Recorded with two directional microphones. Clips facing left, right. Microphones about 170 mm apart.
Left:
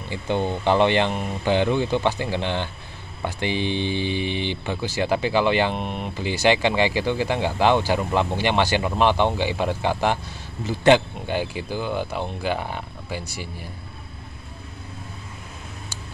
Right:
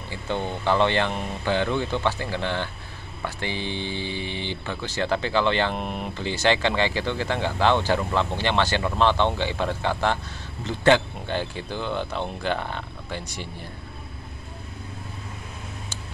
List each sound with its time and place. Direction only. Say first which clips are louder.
0.1 s speech: left 4 dB; 15° left (ahead or behind)
5.8 s speech: left 1 dB; centre (ahead or behind)
6.1 s speech: left 3 dB; 10° left (ahead or behind)